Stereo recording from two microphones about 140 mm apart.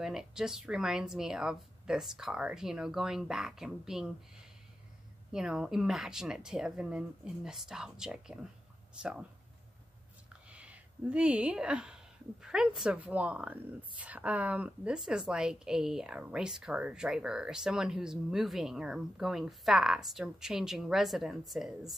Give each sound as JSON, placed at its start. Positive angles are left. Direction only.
{"t": 0.0, "sound": "a woman's voice", "side_deg": -5}
{"t": 5.3, "sound": "a woman's voice", "side_deg": -5}
{"t": 10.3, "sound": "a woman's voice", "side_deg": -10}